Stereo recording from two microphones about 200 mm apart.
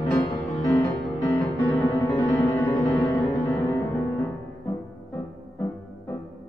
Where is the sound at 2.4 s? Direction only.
15° left (ahead or behind).